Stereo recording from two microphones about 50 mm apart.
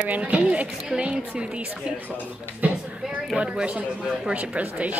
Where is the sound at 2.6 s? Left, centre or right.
Right.